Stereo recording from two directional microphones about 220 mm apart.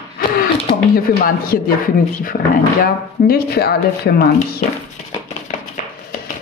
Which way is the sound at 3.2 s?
45° left (ahead or behind).